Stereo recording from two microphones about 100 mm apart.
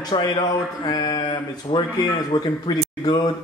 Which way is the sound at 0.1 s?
60° left (ahead or behind).